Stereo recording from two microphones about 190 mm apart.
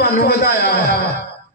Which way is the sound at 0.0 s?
60° left (ahead or behind).